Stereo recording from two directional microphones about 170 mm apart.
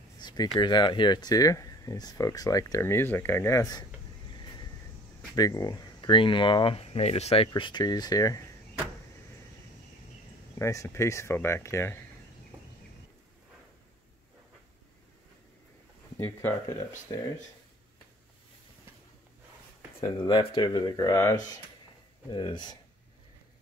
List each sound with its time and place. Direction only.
0.2 s a sound: 25° left (ahead or behind)
0.6 s speech: 25° left (ahead or behind)
5.3 s speech: 20° left (ahead or behind)
10.6 s speech: 20° left (ahead or behind)
16.2 s speech: 15° left (ahead or behind)
20.0 s speech: 30° left (ahead or behind)